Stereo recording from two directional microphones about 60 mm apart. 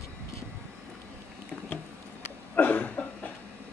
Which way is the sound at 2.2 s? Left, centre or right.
Left.